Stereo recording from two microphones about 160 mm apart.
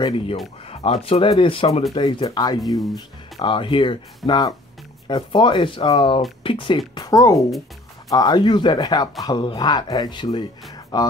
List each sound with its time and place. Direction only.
0.7 s speech: 40° left (ahead or behind)
2.6 s speech: centre (ahead or behind)
3.3 s speech: 35° left (ahead or behind)